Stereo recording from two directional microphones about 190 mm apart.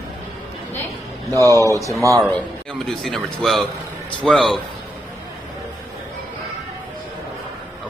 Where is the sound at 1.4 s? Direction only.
15° right (ahead or behind).